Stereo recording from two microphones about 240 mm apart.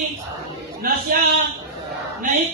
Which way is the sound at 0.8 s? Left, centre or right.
Right.